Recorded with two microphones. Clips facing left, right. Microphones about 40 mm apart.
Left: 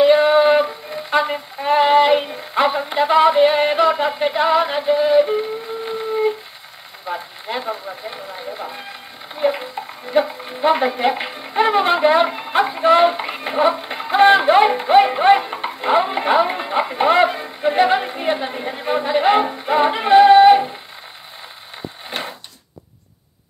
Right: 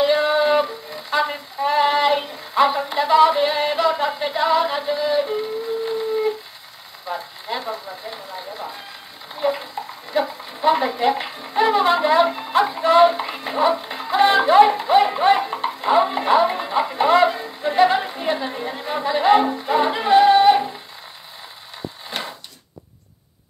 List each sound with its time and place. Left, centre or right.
0.0 s music: left
1.2 s female singing: left
7.1 s a sound: left
9.3 s speech: left
11.3 s female singing: left
13.1 s speech: left
19.9 s music: left